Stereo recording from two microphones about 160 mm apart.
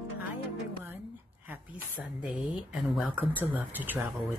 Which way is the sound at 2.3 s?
Centre (ahead or behind).